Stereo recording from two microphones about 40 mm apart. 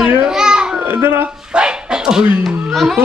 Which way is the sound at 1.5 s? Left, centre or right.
Right.